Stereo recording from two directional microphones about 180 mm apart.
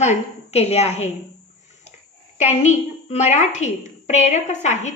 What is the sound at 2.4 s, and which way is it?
Speech, 40° left (ahead or behind).